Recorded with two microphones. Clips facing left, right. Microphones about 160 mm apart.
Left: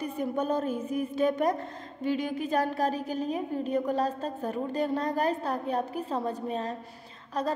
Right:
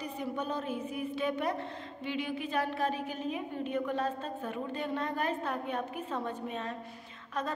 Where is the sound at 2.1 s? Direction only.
40° left (ahead or behind).